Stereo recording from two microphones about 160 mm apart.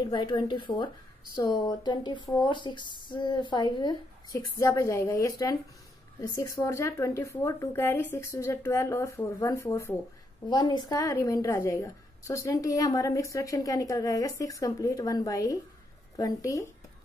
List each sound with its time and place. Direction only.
0.0 s a woman's voice: 30° left (ahead or behind)